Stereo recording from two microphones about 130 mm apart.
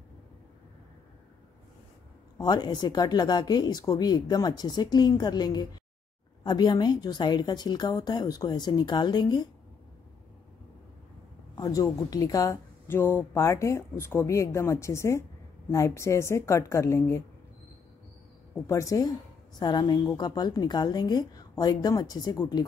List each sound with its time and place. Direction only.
2.3 s speech: 30° left (ahead or behind)
11.5 s speech: 30° left (ahead or behind)
18.7 s speech: 25° left (ahead or behind)